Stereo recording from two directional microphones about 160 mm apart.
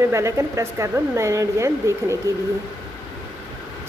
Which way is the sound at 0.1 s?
15° right (ahead or behind).